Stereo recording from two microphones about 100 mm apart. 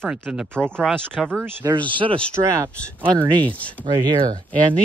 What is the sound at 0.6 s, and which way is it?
Speech, 10° left (ahead or behind).